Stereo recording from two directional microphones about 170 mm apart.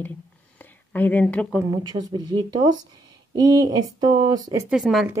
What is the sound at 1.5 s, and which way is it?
Speech, 20° right (ahead or behind).